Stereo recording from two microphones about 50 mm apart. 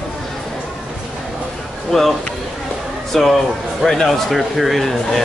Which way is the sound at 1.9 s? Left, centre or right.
Centre.